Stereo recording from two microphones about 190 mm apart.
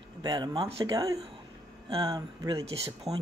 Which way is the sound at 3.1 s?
35° right (ahead or behind).